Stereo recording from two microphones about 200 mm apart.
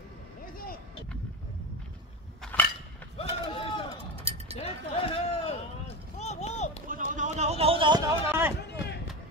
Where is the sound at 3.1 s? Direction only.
25° left (ahead or behind).